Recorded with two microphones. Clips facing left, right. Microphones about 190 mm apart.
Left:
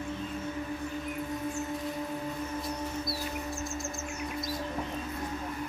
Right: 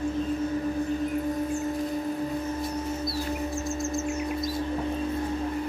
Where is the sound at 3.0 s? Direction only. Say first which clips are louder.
Right 6 dB; centre (ahead or behind).